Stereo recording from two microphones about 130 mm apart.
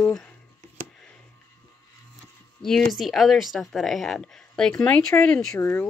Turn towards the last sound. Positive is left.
turn(degrees=15)  # may be behind; listen again after turning